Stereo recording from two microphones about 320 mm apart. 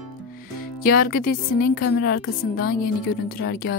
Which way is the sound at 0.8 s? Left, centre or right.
Left.